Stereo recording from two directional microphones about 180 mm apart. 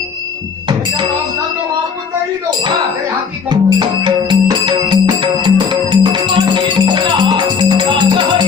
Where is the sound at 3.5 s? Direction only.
25° right (ahead or behind).